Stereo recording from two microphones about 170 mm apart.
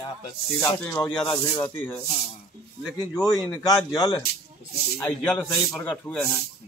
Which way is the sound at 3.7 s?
20° left (ahead or behind).